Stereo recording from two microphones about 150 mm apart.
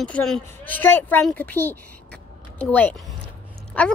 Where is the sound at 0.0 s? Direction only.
5° left (ahead or behind).